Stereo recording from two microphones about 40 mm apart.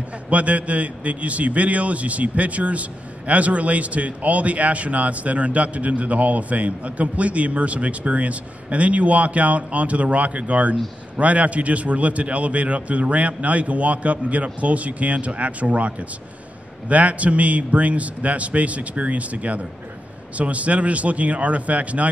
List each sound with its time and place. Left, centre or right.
0.3 s a man's voice: right